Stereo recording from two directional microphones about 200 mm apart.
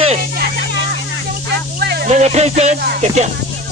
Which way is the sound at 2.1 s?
35° right (ahead or behind).